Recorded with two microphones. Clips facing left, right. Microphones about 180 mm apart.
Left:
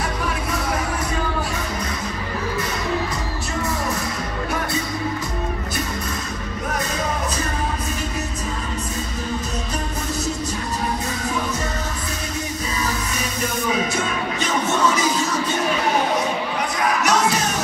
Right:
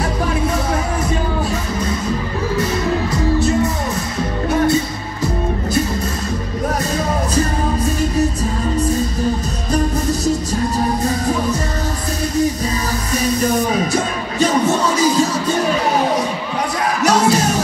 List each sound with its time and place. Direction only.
13.2 s music: 40° right (ahead or behind)
17.0 s music: 35° right (ahead or behind)